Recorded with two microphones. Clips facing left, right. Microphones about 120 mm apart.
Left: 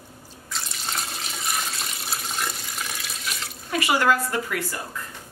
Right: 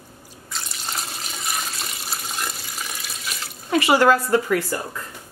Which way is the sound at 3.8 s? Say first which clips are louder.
Right 4 dB; 30° right (ahead or behind).